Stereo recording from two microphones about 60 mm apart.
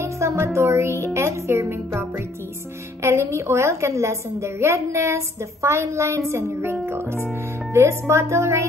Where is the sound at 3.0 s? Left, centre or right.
Right.